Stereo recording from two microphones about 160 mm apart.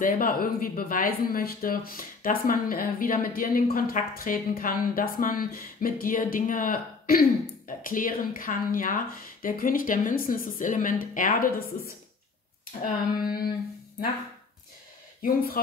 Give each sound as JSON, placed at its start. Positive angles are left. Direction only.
{"t": 0.0, "sound": "speech", "side_deg": 65}
{"t": 12.8, "sound": "a sound", "side_deg": 65}
{"t": 15.2, "sound": "speech", "side_deg": 60}